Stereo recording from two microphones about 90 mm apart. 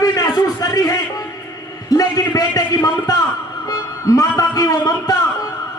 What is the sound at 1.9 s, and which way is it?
A man's voice, 45° left (ahead or behind).